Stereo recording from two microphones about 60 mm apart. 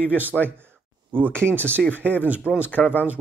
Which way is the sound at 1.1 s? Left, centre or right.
Right.